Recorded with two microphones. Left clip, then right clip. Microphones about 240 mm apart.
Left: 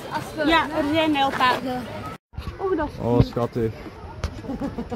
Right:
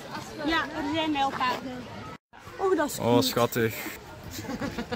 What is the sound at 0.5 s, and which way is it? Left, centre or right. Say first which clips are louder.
Speech: left 7 dB; left.